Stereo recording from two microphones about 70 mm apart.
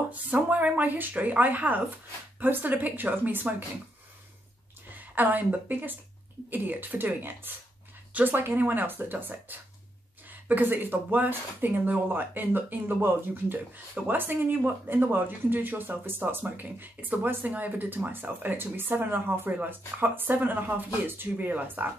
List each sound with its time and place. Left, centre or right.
0.1 s speech: right
4.9 s a woman's voice: right